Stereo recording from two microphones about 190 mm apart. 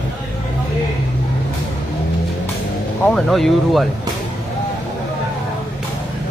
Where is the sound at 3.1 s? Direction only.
Centre (ahead or behind).